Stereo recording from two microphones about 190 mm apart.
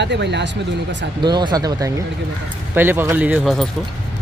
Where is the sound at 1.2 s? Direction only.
25° right (ahead or behind); by 3.7 s centre (ahead or behind).